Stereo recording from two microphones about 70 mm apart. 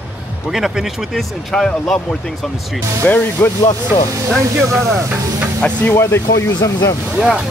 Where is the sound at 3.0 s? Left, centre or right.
Left.